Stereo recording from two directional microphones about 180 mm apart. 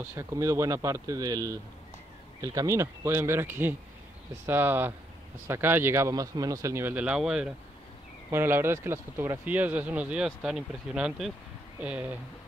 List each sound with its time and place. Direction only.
0.1 s speech: 15° right (ahead or behind)